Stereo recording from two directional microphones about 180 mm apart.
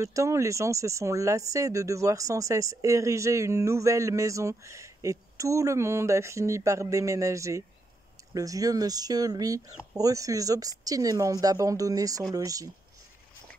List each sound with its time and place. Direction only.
0.0 s speech: 15° right (ahead or behind)